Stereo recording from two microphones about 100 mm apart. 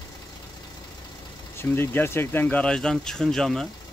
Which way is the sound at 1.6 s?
25° left (ahead or behind).